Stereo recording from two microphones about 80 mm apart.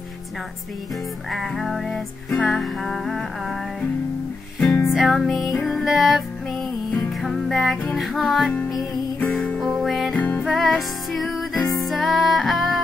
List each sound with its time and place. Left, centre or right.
1.3 s music: centre
4.6 s music: centre
4.9 s music: centre
7.2 s music: centre
9.2 s music: centre
10.1 s music: left
10.4 s music: centre